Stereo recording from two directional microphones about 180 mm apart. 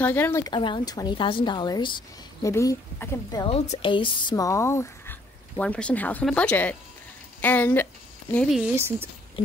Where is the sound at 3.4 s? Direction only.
35° left (ahead or behind); by 6.8 s 10° left (ahead or behind).